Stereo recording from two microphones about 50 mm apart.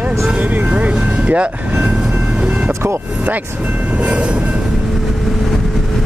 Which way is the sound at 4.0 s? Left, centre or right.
Right.